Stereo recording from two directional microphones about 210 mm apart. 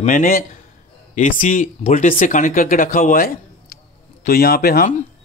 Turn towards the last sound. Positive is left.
turn(degrees=45)  # may be behind; listen again after turning